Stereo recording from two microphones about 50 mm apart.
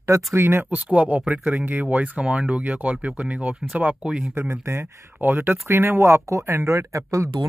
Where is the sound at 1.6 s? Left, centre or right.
Right.